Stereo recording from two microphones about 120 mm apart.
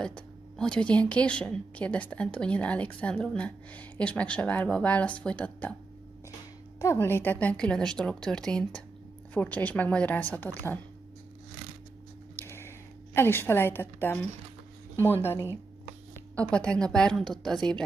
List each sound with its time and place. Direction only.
0.0 s a woman's voice: 5° left (ahead or behind)
6.8 s a woman's voice: 25° left (ahead or behind)
12.4 s a sound: 20° left (ahead or behind)
16.3 s a woman's voice: 10° left (ahead or behind)